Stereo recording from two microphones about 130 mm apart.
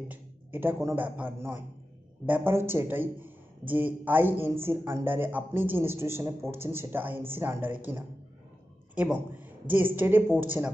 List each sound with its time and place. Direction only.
0.1 s speech: 15° right (ahead or behind)